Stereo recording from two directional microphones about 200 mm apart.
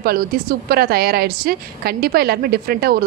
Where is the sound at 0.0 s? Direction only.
50° right (ahead or behind).